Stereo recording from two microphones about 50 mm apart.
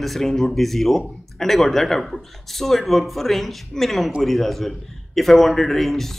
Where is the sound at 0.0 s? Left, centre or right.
Centre.